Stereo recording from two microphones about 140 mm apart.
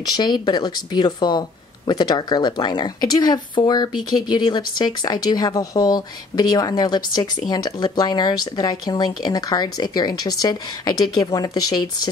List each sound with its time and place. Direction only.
0.1 s speech: 30° left (ahead or behind)